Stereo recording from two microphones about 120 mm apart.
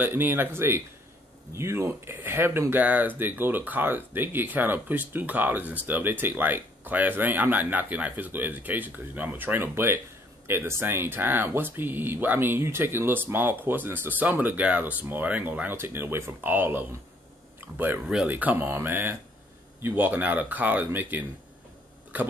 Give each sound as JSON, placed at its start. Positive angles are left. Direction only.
{"t": 0.0, "sound": "speech", "side_deg": -15}